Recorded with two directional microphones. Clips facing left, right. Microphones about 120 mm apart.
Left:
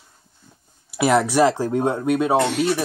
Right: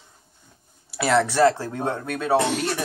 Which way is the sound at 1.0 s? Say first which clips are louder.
Left 2 dB; 15° left (ahead or behind).